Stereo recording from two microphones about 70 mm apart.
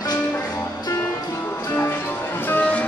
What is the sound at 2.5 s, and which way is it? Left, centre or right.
Music, left.